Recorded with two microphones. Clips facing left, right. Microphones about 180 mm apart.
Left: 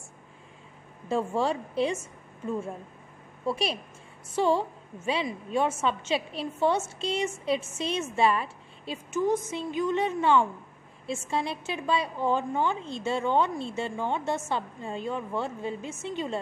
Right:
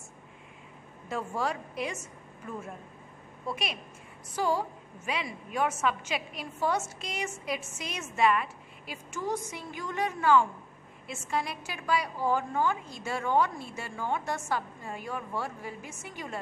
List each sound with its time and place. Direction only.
1.0 s a woman's voice: 30° left (ahead or behind)